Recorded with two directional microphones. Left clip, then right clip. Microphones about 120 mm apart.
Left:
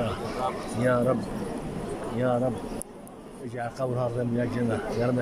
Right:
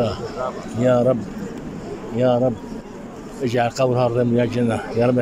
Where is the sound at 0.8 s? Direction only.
20° right (ahead or behind).